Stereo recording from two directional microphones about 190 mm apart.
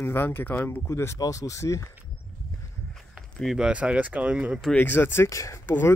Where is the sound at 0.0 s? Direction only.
10° left (ahead or behind).